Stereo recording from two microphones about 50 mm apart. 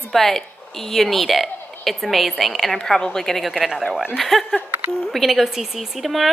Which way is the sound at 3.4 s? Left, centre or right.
Centre.